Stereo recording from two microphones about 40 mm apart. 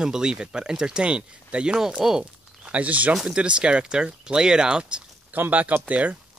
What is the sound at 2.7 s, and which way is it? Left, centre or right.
Speech, right.